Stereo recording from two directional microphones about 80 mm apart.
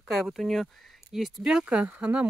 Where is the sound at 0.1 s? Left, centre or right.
Centre.